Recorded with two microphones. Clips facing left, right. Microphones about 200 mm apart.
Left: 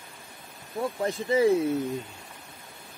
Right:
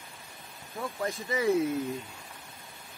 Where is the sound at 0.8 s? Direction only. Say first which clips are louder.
Left 5 dB; 25° left (ahead or behind).